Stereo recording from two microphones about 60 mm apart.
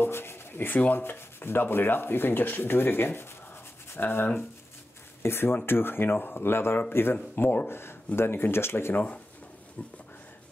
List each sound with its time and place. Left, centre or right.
0.0 s speech: left
0.7 s rub: left
8.2 s speech: left
8.9 s speech: left